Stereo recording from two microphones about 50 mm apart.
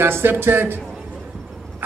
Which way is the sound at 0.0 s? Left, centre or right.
Right.